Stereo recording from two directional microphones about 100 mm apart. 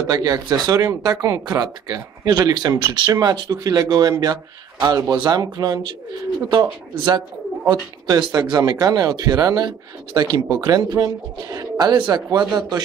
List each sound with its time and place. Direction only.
0.1 s speech: 45° right (ahead or behind)